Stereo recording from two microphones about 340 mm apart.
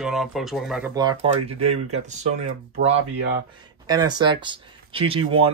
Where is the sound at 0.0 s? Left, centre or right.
Centre.